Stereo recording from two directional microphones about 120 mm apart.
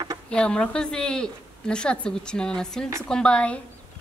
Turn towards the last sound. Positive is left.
turn(degrees=10)  # may be behind; listen again after turning